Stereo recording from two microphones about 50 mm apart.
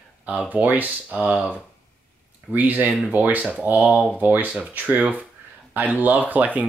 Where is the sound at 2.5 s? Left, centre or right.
Right.